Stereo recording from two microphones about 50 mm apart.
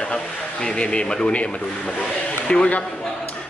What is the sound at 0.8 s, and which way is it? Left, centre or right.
A man's voice, centre.